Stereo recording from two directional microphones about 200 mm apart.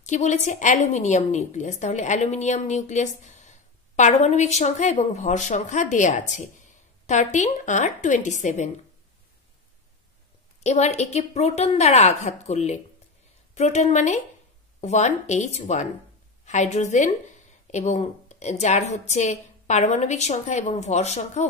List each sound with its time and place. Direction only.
0.0 s a woman's voice: 35° left (ahead or behind)
10.6 s a woman's voice: 35° left (ahead or behind)